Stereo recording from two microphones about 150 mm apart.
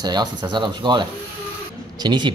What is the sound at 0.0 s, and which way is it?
Speech, 25° right (ahead or behind).